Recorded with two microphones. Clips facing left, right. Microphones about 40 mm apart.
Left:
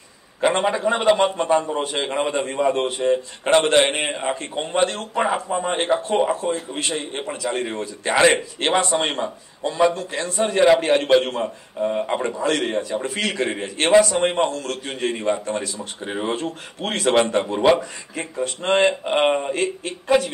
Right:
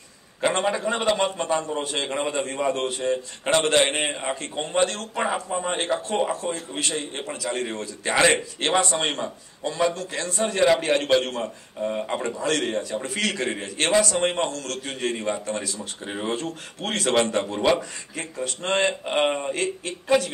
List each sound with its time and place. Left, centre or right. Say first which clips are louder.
0.4 s a man's voice: left 4 dB; centre